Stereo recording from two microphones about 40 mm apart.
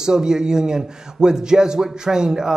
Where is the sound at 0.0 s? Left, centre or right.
Centre.